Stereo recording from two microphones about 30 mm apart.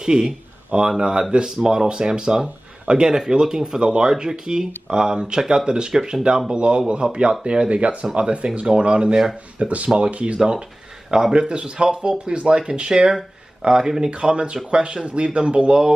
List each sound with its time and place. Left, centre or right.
0.0 s speech: right
3.8 s speech: right
9.6 s speech: right
10.3 s speech: right
14.3 s speech: right